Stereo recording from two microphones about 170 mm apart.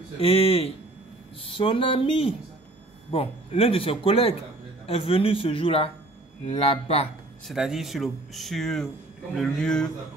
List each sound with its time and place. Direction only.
0.2 s speech: 35° left (ahead or behind)
7.4 s speech: centre (ahead or behind)